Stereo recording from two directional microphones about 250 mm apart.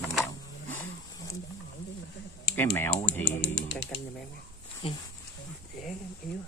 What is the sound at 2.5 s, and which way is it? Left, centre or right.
Speech, centre.